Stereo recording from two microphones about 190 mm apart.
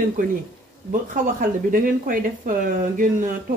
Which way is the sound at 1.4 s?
45° right (ahead or behind).